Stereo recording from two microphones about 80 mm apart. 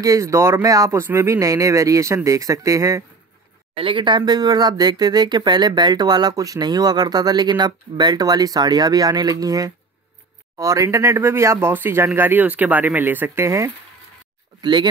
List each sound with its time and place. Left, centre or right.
0.0 s speech: right
0.9 s speech: right
3.8 s speech: right
14.6 s speech: right